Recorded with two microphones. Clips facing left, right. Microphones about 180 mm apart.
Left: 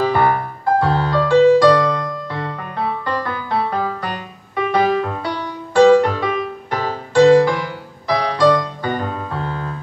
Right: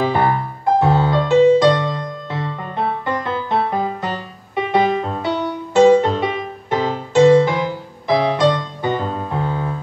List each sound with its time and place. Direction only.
0.0 s music: 20° right (ahead or behind)